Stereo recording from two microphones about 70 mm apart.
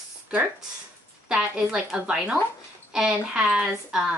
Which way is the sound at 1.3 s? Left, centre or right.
Centre.